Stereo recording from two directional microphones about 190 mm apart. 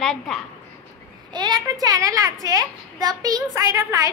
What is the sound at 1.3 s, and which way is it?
A child's voice, 20° right (ahead or behind).